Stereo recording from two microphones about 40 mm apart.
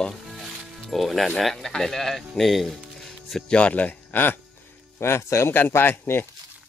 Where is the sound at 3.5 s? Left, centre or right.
Left.